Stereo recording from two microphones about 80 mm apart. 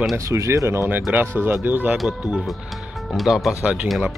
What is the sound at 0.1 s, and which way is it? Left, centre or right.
Speech, right.